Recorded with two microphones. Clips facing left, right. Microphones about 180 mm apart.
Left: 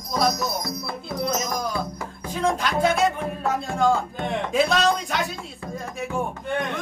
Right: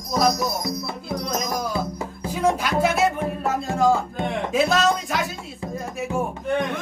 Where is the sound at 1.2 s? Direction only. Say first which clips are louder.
Left 1 dB; centre (ahead or behind).